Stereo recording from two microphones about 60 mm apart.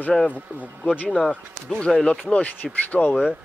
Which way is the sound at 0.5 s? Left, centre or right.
Right.